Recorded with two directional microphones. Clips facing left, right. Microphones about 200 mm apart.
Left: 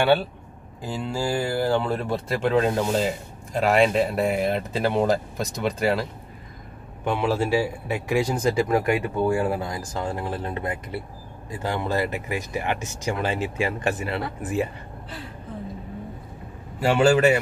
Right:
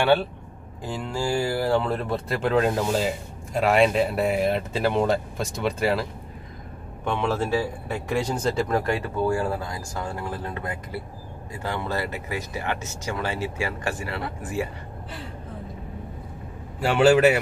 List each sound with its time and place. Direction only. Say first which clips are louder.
0.8 s speech: left 1 dB; 5° left (ahead or behind)
7.1 s speech: left 2 dB; 10° left (ahead or behind)
16.8 s speech: right 1 dB; centre (ahead or behind)